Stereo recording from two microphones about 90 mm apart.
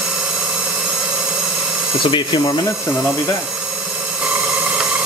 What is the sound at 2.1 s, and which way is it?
Speech, 60° left (ahead or behind).